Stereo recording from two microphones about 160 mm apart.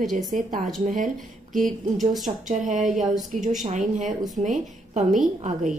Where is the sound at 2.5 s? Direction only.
50° right (ahead or behind).